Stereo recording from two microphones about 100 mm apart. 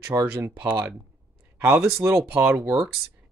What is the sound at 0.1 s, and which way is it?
Speech, 30° right (ahead or behind).